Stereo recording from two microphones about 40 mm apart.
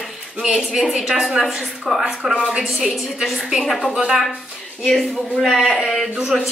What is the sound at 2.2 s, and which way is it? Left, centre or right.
Speech, centre.